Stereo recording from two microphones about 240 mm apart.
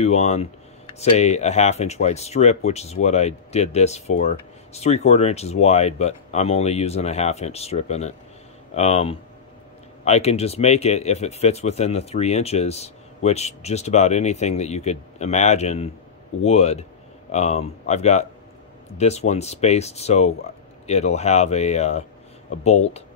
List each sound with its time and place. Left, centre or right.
0.0 s speech: left